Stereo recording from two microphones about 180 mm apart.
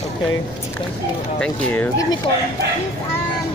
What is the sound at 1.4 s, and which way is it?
Speech, 10° left (ahead or behind).